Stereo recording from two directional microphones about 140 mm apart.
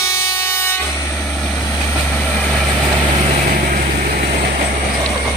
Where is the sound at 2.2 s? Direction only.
5° left (ahead or behind).